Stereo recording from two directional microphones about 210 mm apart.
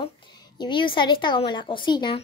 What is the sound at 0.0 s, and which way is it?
A woman's voice, 20° left (ahead or behind).